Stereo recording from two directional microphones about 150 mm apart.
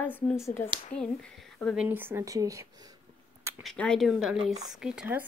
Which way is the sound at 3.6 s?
5° left (ahead or behind).